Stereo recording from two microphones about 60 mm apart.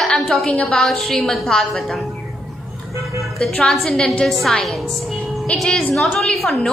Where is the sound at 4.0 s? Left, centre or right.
Centre.